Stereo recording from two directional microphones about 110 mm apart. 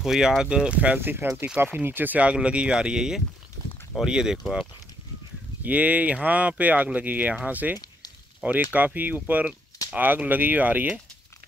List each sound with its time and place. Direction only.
0.0 s speech: 5° right (ahead or behind)
5.6 s speech: 15° right (ahead or behind)